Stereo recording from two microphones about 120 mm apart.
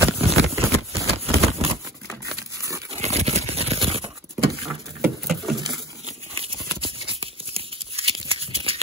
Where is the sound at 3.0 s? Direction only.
60° right (ahead or behind).